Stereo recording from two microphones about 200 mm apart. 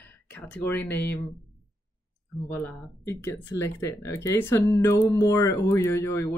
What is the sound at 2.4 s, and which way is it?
Speech, 10° left (ahead or behind).